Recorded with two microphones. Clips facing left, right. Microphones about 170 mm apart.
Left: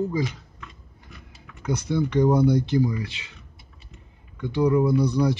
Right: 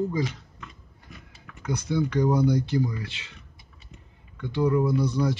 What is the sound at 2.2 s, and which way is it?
Speech, 25° left (ahead or behind).